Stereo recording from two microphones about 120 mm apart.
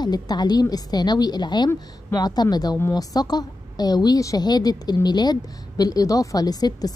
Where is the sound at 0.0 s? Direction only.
35° left (ahead or behind).